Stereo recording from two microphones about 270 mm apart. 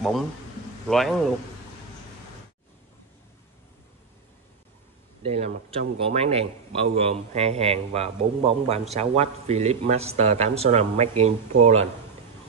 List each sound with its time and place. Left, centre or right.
0.8 s a man's voice: centre
5.2 s a man's voice: right